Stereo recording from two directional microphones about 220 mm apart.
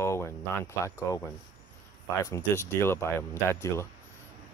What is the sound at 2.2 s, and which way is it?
Speech, 15° left (ahead or behind).